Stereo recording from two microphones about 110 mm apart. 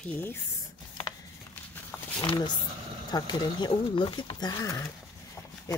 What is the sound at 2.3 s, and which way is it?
Speech, 45° left (ahead or behind).